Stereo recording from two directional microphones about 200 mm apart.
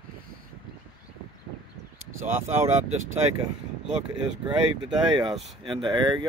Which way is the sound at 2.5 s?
10° right (ahead or behind).